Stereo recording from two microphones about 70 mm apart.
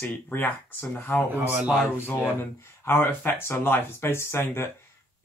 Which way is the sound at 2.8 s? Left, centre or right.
Left.